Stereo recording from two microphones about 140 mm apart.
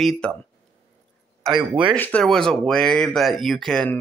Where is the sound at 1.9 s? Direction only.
10° left (ahead or behind).